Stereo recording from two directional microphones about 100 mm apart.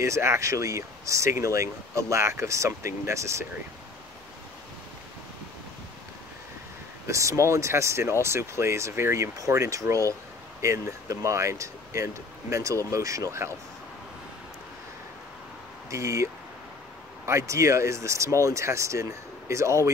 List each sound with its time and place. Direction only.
0.0 s speech: 30° right (ahead or behind)
7.1 s speech: 30° right (ahead or behind)
15.9 s speech: 30° right (ahead or behind)
17.3 s speech: 30° right (ahead or behind)